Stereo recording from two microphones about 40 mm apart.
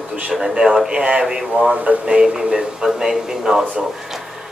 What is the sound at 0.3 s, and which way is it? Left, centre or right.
A man's voice, centre.